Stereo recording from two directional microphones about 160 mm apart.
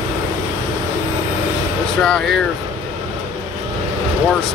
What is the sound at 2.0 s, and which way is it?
Speech, 5° left (ahead or behind).